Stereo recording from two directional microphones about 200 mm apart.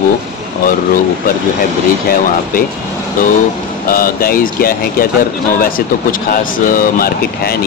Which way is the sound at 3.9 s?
45° left (ahead or behind).